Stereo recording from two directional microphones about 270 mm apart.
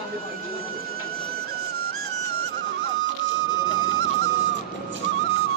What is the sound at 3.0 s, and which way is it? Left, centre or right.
Music, right.